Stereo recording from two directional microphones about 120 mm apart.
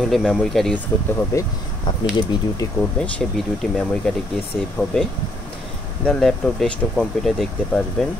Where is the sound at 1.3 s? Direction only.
25° left (ahead or behind).